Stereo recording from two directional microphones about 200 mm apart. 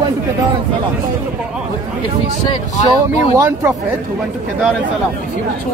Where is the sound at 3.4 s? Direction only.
15° right (ahead or behind).